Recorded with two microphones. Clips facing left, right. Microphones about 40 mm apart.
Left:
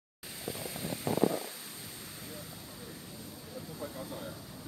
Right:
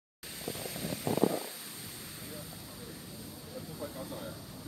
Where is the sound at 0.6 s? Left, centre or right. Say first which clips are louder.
Even; left.